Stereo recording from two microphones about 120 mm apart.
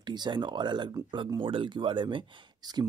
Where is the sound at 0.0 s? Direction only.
35° right (ahead or behind).